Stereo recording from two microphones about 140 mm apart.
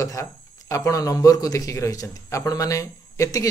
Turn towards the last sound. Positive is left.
turn(degrees=25)  # may be behind; listen again after turning